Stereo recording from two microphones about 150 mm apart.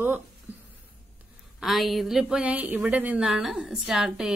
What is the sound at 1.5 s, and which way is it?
Speech, centre (ahead or behind).